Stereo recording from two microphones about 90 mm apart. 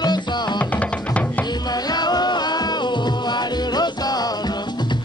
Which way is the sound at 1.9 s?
50° left (ahead or behind).